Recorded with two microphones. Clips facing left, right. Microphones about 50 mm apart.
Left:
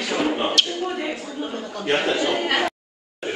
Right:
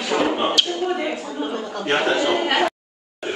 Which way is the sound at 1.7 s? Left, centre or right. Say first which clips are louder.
Right 1 dB; centre.